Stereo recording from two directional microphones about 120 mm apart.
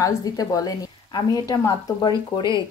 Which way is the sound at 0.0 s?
30° left (ahead or behind).